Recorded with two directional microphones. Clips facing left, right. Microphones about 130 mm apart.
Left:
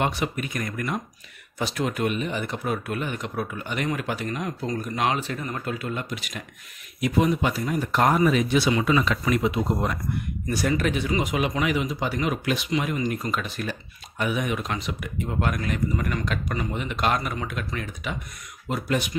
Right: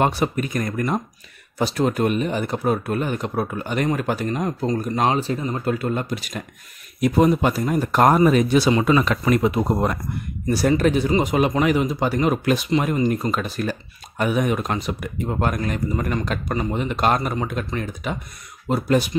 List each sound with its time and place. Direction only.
0.0 s speech: 40° right (ahead or behind)
10.4 s speech: 35° right (ahead or behind)